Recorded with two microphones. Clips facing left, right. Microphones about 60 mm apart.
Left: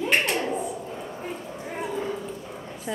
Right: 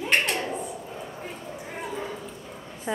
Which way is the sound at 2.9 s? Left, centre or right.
Right.